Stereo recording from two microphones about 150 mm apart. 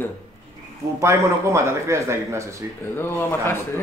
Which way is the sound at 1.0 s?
20° right (ahead or behind).